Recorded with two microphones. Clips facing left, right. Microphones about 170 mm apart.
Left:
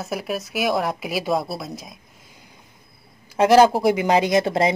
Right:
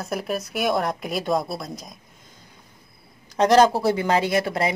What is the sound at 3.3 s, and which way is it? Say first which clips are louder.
Speech: left 2 dB; 5° left (ahead or behind).